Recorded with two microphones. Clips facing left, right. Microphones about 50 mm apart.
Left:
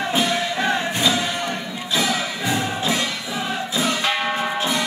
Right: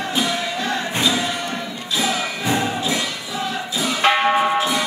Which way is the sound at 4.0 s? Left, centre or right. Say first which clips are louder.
Right 6 dB; right.